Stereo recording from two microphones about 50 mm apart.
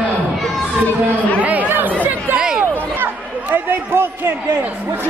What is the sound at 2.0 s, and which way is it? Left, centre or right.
Chatter, right.